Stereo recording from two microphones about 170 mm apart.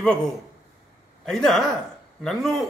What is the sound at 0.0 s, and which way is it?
A man's voice, 5° left (ahead or behind).